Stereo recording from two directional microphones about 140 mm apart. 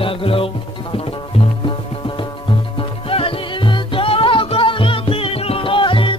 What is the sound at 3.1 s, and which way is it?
Music, 40° left (ahead or behind).